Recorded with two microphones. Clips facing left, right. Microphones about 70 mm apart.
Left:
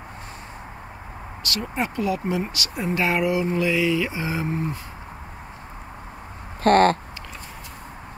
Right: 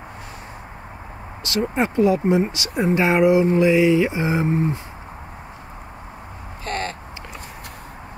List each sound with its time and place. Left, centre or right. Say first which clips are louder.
1.4 s mantra: right 6 dB; right
6.6 s speech: left 12 dB; left